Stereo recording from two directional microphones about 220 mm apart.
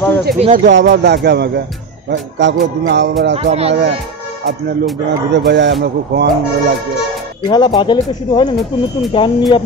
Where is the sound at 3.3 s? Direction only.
30° right (ahead or behind).